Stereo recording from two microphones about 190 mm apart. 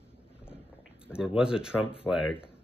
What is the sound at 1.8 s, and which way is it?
Speech, 30° left (ahead or behind).